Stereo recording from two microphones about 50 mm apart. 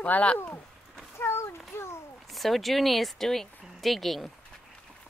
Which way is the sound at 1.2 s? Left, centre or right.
Left.